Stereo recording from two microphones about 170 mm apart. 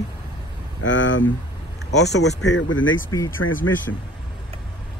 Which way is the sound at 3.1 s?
20° left (ahead or behind).